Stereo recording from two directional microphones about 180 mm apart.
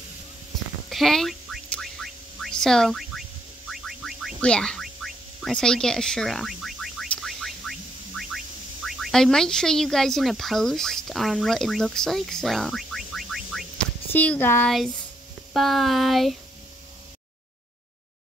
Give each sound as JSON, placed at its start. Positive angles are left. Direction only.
{"t": 0.8, "sound": "a sound", "side_deg": 0}
{"t": 3.8, "sound": "boing", "side_deg": 0}
{"t": 8.8, "sound": "speech", "side_deg": 0}
{"t": 15.5, "sound": "child singing", "side_deg": 0}